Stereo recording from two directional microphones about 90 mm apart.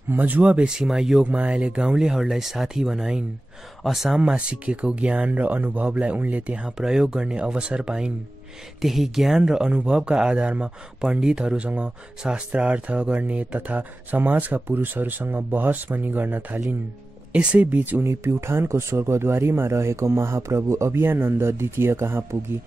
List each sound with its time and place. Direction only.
0.1 s speech: 20° right (ahead or behind)